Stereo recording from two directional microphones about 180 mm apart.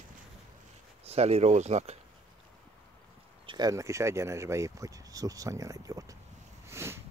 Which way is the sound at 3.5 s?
20° right (ahead or behind).